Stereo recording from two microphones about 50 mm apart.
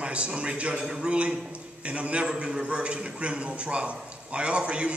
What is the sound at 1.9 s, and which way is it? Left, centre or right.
Speech, right.